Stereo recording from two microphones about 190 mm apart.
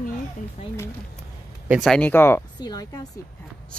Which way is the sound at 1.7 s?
Centre (ahead or behind).